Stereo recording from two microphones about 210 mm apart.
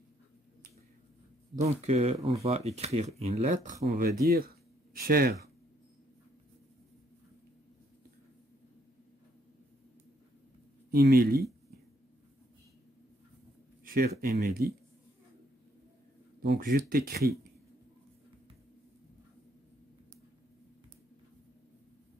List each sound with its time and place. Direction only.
1.5 s speech: 30° right (ahead or behind)
2.1 s speech: 15° right (ahead or behind)
2.4 s speech: 30° right (ahead or behind)
4.0 s speech: 45° right (ahead or behind)
10.9 s speech: 45° right (ahead or behind)
13.8 s a sound: 45° right (ahead or behind)
14.1 s speech: 35° right (ahead or behind)
16.3 s speech: 45° right (ahead or behind)